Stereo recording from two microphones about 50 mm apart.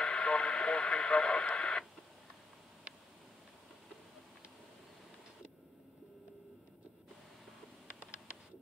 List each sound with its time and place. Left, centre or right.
0.0 s radio: centre